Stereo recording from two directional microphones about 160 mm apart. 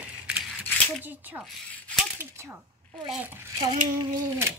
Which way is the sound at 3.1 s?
10° right (ahead or behind).